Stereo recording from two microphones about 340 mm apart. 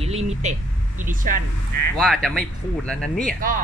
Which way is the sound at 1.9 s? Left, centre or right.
Centre.